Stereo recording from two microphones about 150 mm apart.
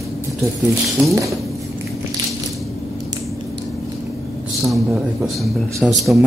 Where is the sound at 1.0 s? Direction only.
15° right (ahead or behind).